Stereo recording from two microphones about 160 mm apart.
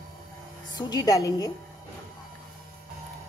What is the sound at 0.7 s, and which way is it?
Speech, 25° left (ahead or behind).